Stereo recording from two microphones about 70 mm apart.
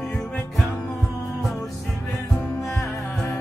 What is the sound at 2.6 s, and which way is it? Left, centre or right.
Music, left.